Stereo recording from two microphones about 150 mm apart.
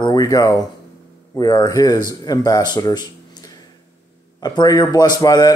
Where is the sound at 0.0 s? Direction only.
25° left (ahead or behind).